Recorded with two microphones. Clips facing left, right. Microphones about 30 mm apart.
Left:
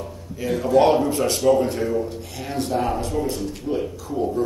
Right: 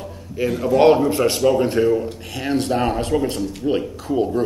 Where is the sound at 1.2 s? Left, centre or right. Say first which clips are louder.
Right 1 dB; right.